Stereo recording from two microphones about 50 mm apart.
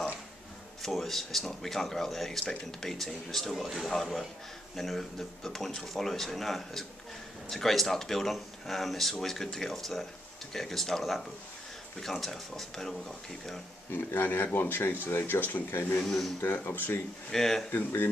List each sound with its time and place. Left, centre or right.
0.8 s speech: centre
13.9 s speech: left
16.1 s speech: centre
16.3 s speech: left
17.3 s speech: centre
17.6 s speech: left